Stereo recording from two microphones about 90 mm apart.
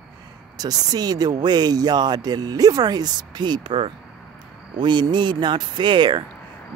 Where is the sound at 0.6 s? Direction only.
45° right (ahead or behind).